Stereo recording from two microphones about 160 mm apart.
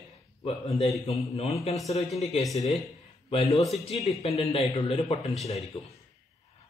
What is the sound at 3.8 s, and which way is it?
Speech, 35° left (ahead or behind).